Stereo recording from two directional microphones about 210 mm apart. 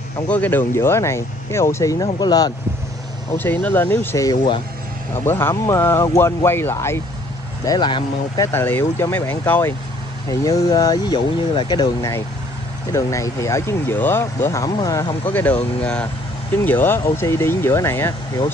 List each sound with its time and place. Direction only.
0.3 s speech: 10° left (ahead or behind)
15.3 s speech: 10° left (ahead or behind)